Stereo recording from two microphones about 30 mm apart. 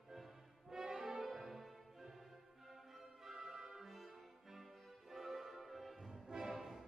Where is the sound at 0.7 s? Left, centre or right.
Right.